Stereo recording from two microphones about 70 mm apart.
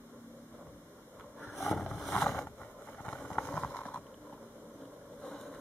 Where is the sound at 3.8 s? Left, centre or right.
Centre.